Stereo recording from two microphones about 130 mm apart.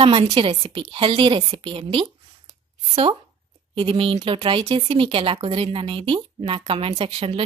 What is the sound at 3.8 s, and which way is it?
Speech, 45° right (ahead or behind).